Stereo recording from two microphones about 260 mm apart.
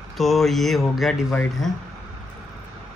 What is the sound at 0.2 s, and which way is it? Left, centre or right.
Speech, centre.